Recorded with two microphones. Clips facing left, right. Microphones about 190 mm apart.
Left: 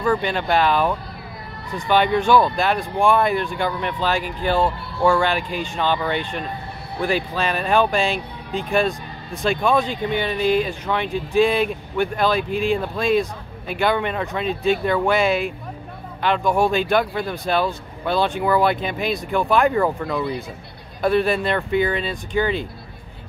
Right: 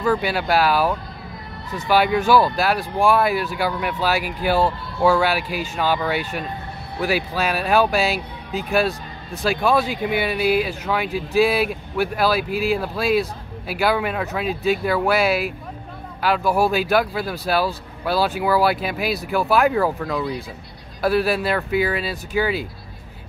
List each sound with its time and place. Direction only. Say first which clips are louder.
0.0 s speech: even; 5° right (ahead or behind)